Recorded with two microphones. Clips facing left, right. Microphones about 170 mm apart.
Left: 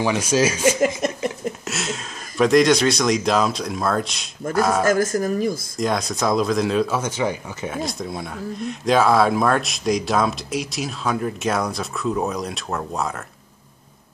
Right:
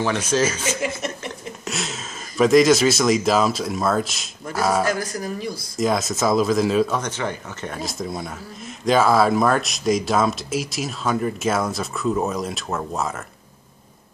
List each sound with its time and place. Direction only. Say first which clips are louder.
0.0 s speech: left 2 dB; 10° left (ahead or behind)
4.8 s speech: left 6 dB; 45° left (ahead or behind)
5.8 s speech: right 4 dB; centre (ahead or behind)
7.0 s speech: left 3 dB; 10° left (ahead or behind)